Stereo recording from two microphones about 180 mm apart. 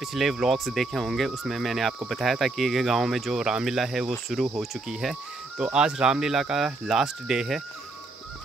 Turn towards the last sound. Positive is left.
turn(degrees=0)  # may be behind; listen again after turning